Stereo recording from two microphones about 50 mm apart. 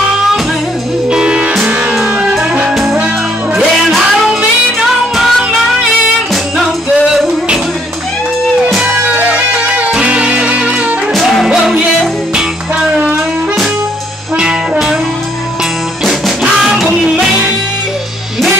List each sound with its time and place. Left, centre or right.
1.1 s music: centre
2.7 s music: centre
4.7 s music: centre
9.0 s music: right
9.9 s music: centre
11.1 s music: centre
12.9 s wind instrument: right
16.8 s music: centre